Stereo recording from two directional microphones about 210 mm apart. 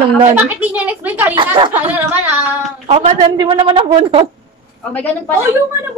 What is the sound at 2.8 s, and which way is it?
Speech, 25° right (ahead or behind).